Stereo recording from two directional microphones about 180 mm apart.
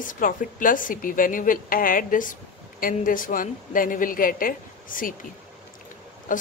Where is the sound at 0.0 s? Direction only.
50° left (ahead or behind).